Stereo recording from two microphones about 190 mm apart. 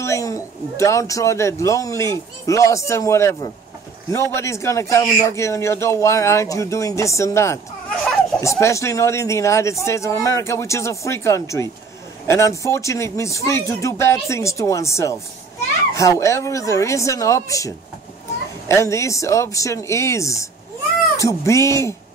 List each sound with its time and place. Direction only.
0.0 s a man's voice: 15° left (ahead or behind)